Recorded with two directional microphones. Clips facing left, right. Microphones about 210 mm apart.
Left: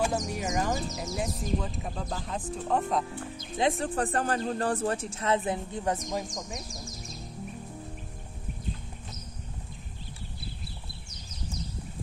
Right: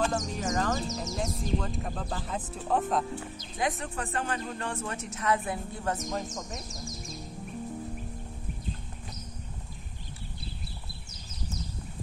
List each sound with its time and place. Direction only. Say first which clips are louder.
0.0 s speech: even; 10° left (ahead or behind)
3.5 s speech: left 5 dB; 30° left (ahead or behind)